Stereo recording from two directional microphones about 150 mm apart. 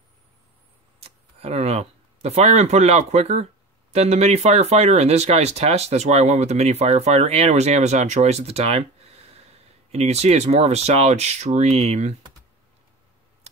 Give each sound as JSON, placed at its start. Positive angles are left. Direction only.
{"t": 1.0, "sound": "speech", "side_deg": -45}